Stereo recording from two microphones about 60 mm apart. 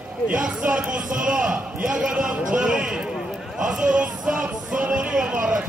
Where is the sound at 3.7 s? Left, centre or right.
Centre.